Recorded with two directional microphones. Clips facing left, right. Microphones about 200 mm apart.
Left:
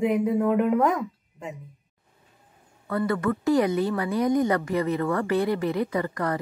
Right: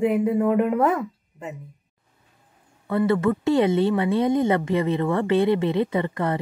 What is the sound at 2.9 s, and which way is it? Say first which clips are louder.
Speech: right 4 dB; 25° right (ahead or behind).